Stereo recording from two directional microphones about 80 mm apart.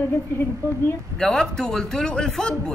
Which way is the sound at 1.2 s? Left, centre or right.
Centre.